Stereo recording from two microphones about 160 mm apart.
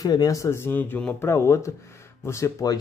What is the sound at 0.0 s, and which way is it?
Speech, 25° left (ahead or behind).